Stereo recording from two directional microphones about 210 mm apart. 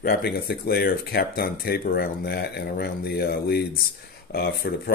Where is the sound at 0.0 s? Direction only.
45° left (ahead or behind).